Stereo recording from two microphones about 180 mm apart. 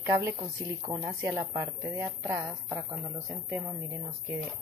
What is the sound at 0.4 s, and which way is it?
Speech, 25° right (ahead or behind).